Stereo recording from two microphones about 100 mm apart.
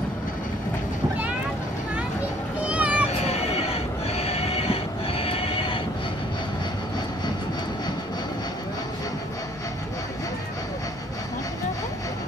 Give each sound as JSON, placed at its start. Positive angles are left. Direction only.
{"t": 2.7, "sound": "vehicle", "side_deg": -15}
{"t": 3.3, "sound": "neigh", "side_deg": 90}